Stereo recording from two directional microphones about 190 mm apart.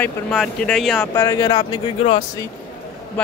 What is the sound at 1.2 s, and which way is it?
Speech, 20° left (ahead or behind).